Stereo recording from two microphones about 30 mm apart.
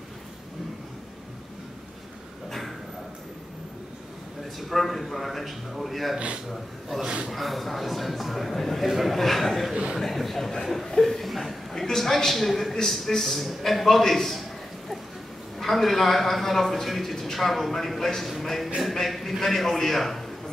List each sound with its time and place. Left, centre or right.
4.6 s a man's voice: centre
6.1 s a man's voice: right
6.5 s a man's voice: centre
10.9 s chuckle: centre
11.7 s a woman's voice: centre
15.6 s a man's voice: centre